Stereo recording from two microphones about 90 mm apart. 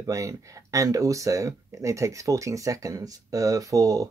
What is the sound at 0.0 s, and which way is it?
Speech, 35° right (ahead or behind).